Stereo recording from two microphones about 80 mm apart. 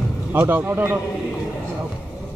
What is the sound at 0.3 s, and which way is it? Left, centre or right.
Speech, right.